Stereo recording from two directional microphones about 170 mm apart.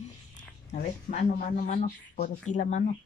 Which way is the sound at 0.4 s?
45° left (ahead or behind).